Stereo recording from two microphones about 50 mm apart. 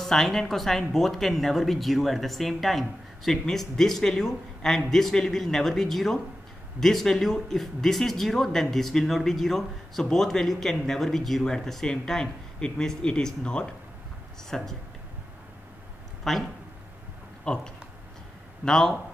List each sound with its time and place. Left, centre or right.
0.0 s speech: centre
14.5 s speech: centre
16.3 s speech: centre
17.5 s speech: centre
18.7 s speech: centre